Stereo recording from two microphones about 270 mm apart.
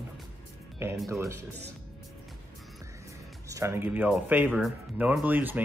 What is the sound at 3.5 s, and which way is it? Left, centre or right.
Speech, centre.